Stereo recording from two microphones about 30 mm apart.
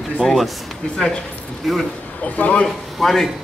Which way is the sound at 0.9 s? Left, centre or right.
Left.